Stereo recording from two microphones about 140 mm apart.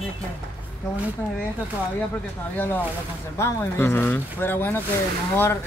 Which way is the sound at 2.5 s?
15° left (ahead or behind).